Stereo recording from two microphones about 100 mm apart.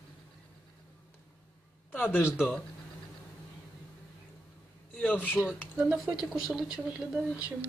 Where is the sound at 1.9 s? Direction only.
20° left (ahead or behind).